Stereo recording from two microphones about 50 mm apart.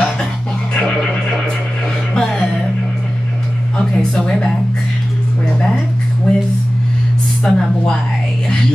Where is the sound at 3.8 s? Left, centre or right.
Centre.